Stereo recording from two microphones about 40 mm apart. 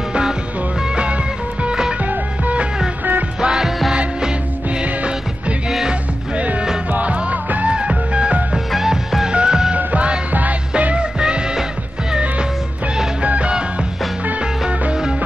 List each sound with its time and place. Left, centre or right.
0.1 s music: centre
0.9 s music: right
3.3 s music: centre
6.9 s music: right
8.7 s music: centre
9.3 s music: right
9.8 s music: right
11.1 s music: right
13.2 s music: right